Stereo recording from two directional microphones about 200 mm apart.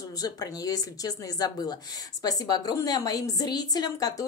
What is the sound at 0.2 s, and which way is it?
A woman's voice, 20° left (ahead or behind).